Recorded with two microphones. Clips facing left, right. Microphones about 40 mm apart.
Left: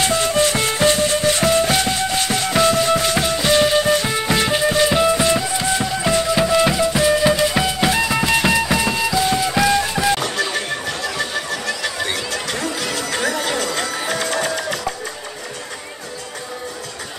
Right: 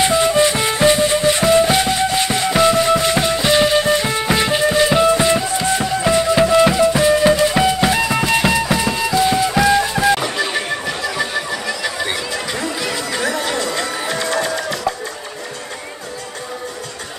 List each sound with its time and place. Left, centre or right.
0.0 s music: right